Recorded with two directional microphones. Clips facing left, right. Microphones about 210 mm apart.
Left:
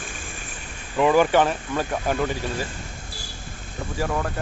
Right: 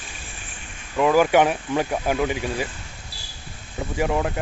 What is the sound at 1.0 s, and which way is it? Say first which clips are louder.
Speech: even; centre (ahead or behind).